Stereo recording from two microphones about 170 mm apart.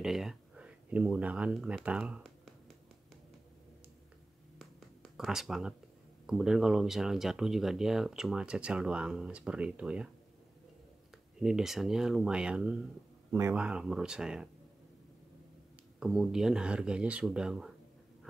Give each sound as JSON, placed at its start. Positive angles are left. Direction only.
{"t": 0.0, "sound": "speech", "side_deg": 0}
{"t": 4.6, "sound": "a sound", "side_deg": 0}
{"t": 6.2, "sound": "speech", "side_deg": -5}
{"t": 11.3, "sound": "speech", "side_deg": -5}
{"t": 16.0, "sound": "speech", "side_deg": 0}